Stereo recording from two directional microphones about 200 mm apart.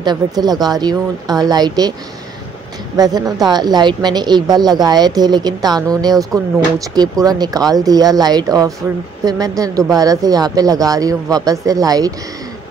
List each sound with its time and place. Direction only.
0.0 s a woman's voice: 20° right (ahead or behind)
3.0 s a woman's voice: 20° right (ahead or behind)